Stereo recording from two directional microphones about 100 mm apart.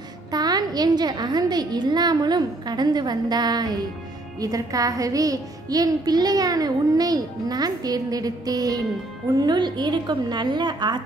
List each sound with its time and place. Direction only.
0.3 s a woman's voice: 40° right (ahead or behind)